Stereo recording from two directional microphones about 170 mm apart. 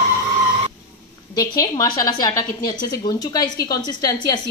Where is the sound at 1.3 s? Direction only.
20° left (ahead or behind).